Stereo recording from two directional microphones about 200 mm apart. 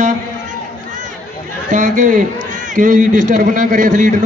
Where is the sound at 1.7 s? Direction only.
40° right (ahead or behind).